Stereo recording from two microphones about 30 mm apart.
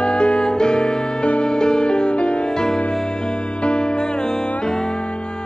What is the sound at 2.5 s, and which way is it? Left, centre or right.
Music, left.